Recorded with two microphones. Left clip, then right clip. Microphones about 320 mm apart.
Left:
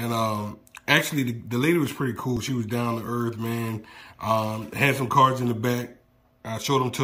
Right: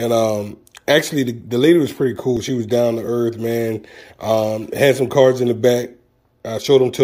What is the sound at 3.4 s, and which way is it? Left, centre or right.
Speech, left.